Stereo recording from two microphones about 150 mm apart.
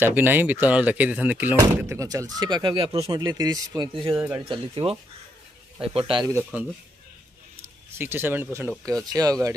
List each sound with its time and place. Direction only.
0.0 s a man's voice: 15° right (ahead or behind); by 6.2 s 35° right (ahead or behind)
8.0 s a man's voice: 15° right (ahead or behind)